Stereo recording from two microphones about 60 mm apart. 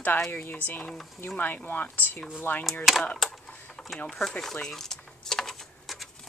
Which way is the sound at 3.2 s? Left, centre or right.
Centre.